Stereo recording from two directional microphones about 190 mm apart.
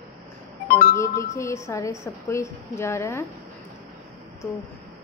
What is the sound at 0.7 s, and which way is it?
Speech, 50° left (ahead or behind).